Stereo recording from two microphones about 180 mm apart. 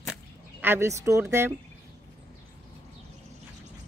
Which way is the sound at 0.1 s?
10° right (ahead or behind).